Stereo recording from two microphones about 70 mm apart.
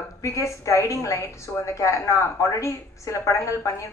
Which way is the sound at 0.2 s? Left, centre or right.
Left.